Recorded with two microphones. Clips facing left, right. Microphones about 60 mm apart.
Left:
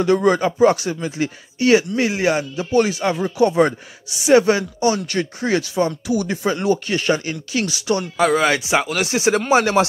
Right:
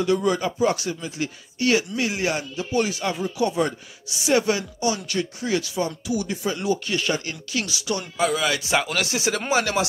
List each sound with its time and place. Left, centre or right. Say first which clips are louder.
0.0 s speech: left 6 dB; left
1.6 s speech: left 6 dB; left
3.0 s speech: left 6 dB; left
8.5 s speech: left 4 dB; centre
9.1 s speech: left 8 dB; left